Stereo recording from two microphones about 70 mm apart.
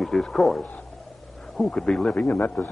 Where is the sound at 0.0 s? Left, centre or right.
Centre.